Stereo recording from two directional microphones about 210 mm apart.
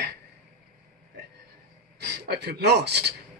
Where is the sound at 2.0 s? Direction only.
50° right (ahead or behind).